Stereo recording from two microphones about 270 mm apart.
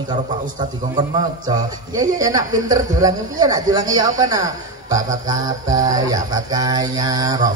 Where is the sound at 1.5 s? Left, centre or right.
Centre.